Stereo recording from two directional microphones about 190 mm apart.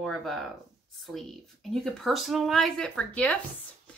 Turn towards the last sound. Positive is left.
turn(degrees=5)  # may be behind; listen again after turning